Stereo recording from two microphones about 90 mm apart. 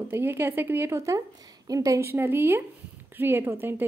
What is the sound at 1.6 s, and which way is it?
Speech, 40° right (ahead or behind).